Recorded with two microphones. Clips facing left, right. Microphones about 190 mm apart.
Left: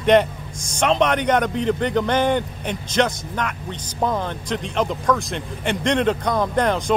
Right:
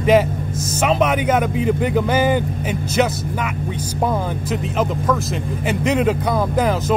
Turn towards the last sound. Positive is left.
turn(degrees=-5)  # may be behind; listen again after turning